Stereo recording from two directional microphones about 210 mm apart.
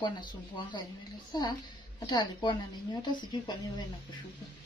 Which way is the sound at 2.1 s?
20° left (ahead or behind).